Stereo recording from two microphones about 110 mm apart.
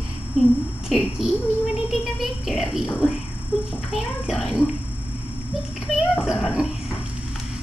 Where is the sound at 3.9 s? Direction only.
Centre (ahead or behind).